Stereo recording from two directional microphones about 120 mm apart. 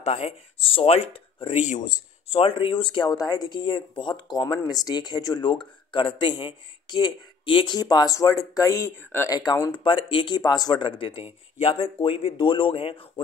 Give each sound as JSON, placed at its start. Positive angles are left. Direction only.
{"t": 0.0, "sound": "speech", "side_deg": 65}
{"t": 2.2, "sound": "speech", "side_deg": 50}
{"t": 9.4, "sound": "speech", "side_deg": 35}